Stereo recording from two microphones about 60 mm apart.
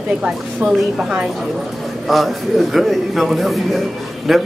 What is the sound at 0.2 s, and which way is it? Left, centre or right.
A woman's voice, centre.